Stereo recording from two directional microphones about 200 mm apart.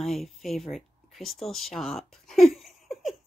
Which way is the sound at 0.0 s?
Centre (ahead or behind).